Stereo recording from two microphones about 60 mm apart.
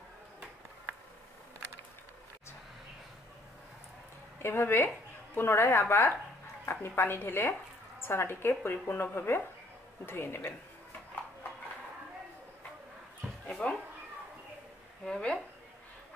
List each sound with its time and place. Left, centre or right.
4.4 s a woman's voice: left
13.6 s speech: left
15.0 s speech: centre